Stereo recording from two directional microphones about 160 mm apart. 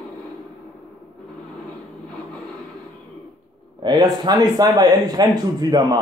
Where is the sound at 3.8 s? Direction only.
25° right (ahead or behind).